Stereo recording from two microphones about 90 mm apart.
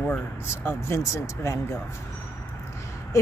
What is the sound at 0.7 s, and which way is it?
Speech, 30° left (ahead or behind).